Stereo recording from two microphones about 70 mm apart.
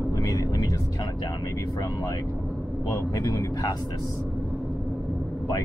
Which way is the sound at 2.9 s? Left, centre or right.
Left.